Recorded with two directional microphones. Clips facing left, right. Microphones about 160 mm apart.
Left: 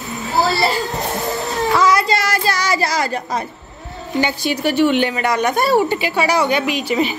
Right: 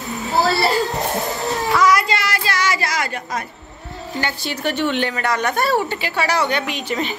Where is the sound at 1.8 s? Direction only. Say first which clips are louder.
Left 1 dB; 30° left (ahead or behind).